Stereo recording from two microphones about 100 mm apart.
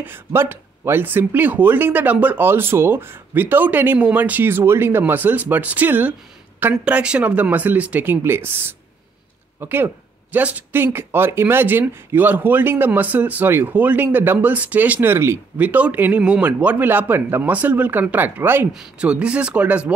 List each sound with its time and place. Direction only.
0.0 s speech: 25° right (ahead or behind)
18.7 s speech: 5° right (ahead or behind)